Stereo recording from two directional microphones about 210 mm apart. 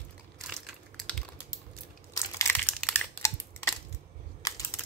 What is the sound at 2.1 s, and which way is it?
Crushing, 15° left (ahead or behind).